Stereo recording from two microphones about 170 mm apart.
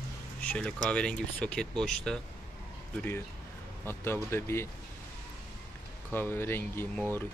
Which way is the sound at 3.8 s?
15° left (ahead or behind).